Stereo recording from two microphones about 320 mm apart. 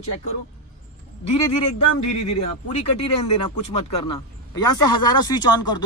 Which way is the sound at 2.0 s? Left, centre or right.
Left.